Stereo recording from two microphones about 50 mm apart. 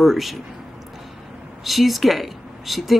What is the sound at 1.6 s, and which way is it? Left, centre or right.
Speech, centre.